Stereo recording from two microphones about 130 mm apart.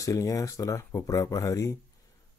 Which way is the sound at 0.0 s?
25° left (ahead or behind).